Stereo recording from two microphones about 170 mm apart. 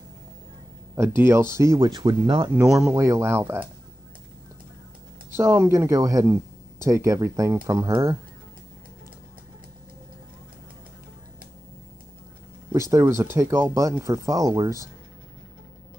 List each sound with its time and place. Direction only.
0.9 s speech: 15° right (ahead or behind)
2.0 s speech: 30° right (ahead or behind)
2.5 s speech: 5° right (ahead or behind)
2.9 s speech: 15° right (ahead or behind)
5.3 s speech: 15° right (ahead or behind)
12.9 s speech: 15° right (ahead or behind)